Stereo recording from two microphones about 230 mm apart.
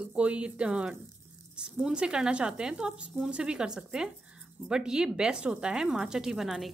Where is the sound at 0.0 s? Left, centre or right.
Centre.